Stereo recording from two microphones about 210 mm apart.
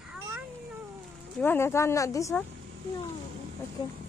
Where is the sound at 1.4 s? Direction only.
10° left (ahead or behind).